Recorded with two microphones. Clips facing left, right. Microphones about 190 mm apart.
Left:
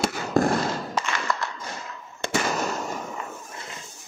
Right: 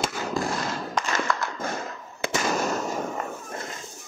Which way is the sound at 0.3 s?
55° left (ahead or behind).